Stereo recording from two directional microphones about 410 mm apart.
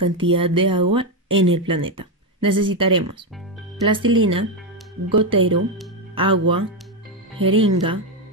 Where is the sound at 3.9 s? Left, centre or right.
Centre.